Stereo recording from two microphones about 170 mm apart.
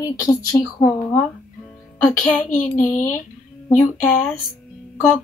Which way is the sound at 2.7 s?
50° left (ahead or behind).